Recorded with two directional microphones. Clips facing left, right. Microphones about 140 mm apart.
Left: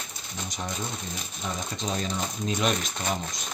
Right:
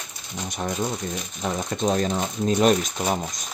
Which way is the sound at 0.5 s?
55° right (ahead or behind).